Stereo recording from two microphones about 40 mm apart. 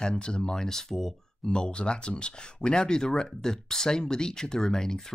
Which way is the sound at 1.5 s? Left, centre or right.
Left.